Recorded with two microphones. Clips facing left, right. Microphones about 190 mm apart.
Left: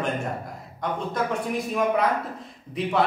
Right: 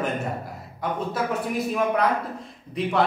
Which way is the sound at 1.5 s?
Centre (ahead or behind).